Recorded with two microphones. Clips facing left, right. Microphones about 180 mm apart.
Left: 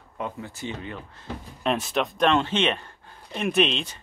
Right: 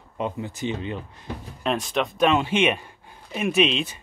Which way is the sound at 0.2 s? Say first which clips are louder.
Right 5 dB; 20° right (ahead or behind).